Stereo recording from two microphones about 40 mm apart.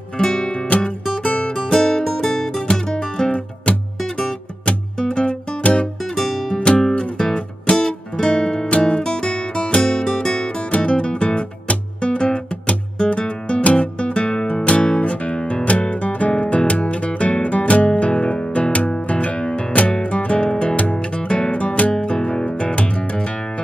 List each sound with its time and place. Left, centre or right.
0.2 s music: centre
0.7 s music: left
1.7 s music: centre
4.9 s music: left
5.6 s music: left
6.1 s music: centre
6.5 s music: left
8.6 s music: left
20.7 s music: left